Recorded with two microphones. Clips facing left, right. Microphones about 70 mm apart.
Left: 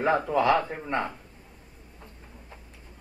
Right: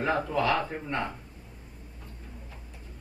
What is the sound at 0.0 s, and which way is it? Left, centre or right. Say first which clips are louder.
Speech: left 4 dB; left.